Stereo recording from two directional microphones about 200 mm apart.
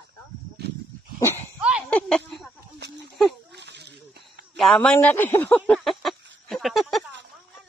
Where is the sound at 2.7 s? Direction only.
55° right (ahead or behind).